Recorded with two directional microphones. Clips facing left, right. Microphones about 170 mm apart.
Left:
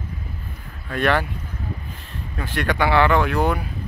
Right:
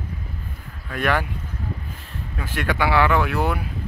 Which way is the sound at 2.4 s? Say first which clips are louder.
Left 2 dB; 5° right (ahead or behind).